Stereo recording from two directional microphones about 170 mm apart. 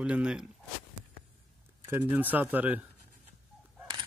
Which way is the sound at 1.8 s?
15° right (ahead or behind).